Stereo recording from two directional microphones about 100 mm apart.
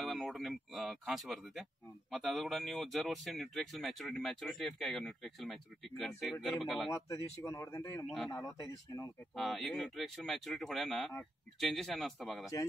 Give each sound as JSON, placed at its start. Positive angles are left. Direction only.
{"t": 0.0, "sound": "speech", "side_deg": 0}
{"t": 6.9, "sound": "speech", "side_deg": 30}
{"t": 9.3, "sound": "speech", "side_deg": 0}